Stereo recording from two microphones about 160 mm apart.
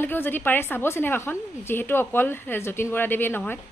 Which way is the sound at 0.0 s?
10° left (ahead or behind).